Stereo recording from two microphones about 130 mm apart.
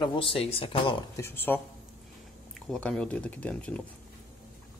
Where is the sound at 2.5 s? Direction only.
5° left (ahead or behind).